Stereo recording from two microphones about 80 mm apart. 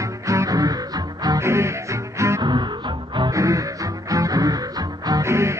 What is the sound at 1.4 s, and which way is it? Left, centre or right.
Music, right.